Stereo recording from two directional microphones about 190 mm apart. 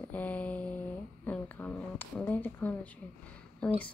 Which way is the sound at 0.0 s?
10° left (ahead or behind).